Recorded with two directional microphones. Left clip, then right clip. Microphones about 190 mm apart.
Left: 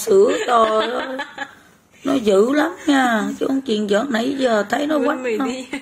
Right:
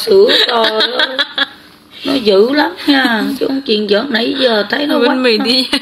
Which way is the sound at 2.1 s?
30° left (ahead or behind).